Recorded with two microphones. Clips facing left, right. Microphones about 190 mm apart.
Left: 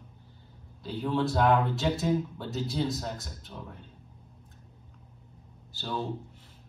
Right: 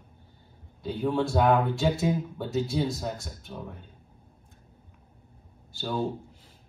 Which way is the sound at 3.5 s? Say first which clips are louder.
Right 4 dB; 15° right (ahead or behind).